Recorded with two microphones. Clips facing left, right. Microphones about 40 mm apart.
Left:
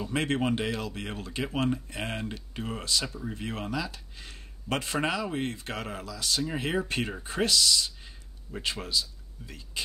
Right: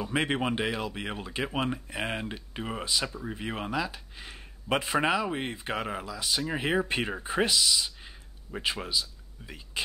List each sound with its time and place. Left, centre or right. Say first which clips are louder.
0.0 s speech: even; centre